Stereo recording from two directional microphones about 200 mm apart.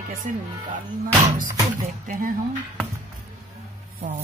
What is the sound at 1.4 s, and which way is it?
Speech, 40° right (ahead or behind).